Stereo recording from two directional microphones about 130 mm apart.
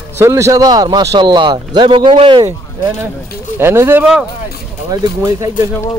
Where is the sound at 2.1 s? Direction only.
50° right (ahead or behind).